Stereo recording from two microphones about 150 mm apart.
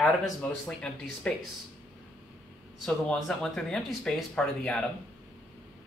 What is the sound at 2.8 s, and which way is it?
Speech, 5° left (ahead or behind).